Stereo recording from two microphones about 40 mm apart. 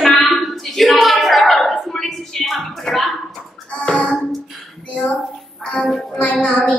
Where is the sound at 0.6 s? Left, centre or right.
Centre.